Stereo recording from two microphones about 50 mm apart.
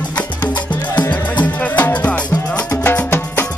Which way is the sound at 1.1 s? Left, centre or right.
Left.